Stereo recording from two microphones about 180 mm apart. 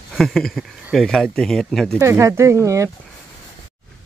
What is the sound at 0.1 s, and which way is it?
Speech, centre (ahead or behind).